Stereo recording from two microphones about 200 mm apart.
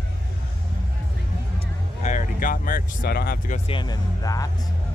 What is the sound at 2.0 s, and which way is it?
Speech, 40° left (ahead or behind).